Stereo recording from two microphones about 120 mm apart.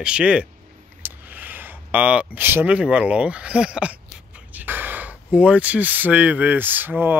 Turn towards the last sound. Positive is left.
turn(degrees=-15)  # may be behind; listen again after turning